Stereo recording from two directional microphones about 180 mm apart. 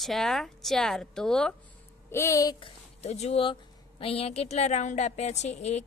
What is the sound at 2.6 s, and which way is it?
A woman's voice, 35° left (ahead or behind).